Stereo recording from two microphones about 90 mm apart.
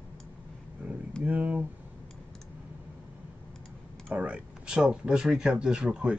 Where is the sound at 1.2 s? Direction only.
15° right (ahead or behind).